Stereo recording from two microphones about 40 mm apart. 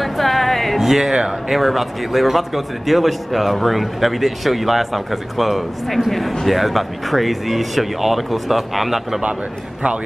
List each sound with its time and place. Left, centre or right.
0.0 s music: centre
0.7 s a man's voice: centre